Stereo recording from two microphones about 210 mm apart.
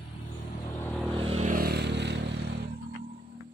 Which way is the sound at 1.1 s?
25° right (ahead or behind).